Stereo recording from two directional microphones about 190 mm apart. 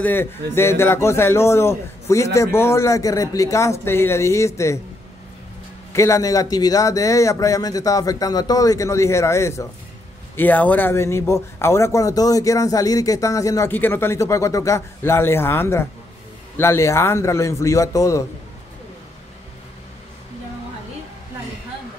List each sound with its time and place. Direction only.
0.0 s speech: 10° left (ahead or behind)
5.9 s speech: 15° left (ahead or behind)